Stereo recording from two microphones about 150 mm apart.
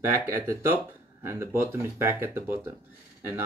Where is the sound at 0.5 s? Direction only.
15° right (ahead or behind).